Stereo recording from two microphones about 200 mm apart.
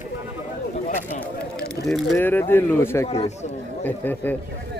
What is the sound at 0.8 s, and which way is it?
Speech, 40° left (ahead or behind).